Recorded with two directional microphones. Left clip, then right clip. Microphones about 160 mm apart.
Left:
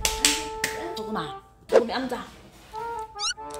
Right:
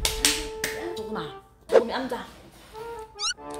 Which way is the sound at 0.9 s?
40° left (ahead or behind).